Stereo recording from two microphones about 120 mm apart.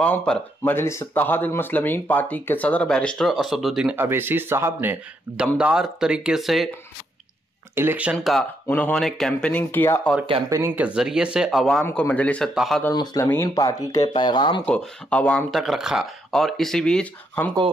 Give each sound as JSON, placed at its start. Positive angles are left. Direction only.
{"t": 0.0, "sound": "speech", "side_deg": 10}
{"t": 5.6, "sound": "speech", "side_deg": -5}
{"t": 7.7, "sound": "speech", "side_deg": -15}
{"t": 8.2, "sound": "speech", "side_deg": 0}
{"t": 8.6, "sound": "speech", "side_deg": 15}
{"t": 10.8, "sound": "speech", "side_deg": -10}
{"t": 11.9, "sound": "speech", "side_deg": 10}
{"t": 12.5, "sound": "speech", "side_deg": 0}
{"t": 12.9, "sound": "speech", "side_deg": 35}
{"t": 13.2, "sound": "speech", "side_deg": 20}
{"t": 13.6, "sound": "speech", "side_deg": 30}
{"t": 14.7, "sound": "speech", "side_deg": 10}
{"t": 15.5, "sound": "speech", "side_deg": 0}